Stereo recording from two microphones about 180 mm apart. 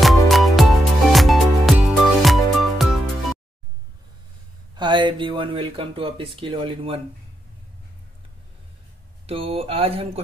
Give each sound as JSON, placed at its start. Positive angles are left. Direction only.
{"t": 0.0, "sound": "music", "side_deg": 0}
{"t": 4.7, "sound": "speech", "side_deg": -25}
{"t": 9.2, "sound": "speech", "side_deg": -30}